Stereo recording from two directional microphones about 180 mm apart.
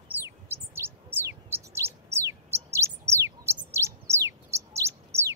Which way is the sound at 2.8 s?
15° right (ahead or behind).